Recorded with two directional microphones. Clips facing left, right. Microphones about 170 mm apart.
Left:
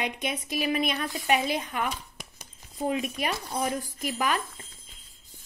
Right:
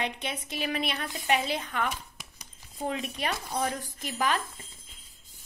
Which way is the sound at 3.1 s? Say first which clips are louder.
Left 1 dB; 15° left (ahead or behind).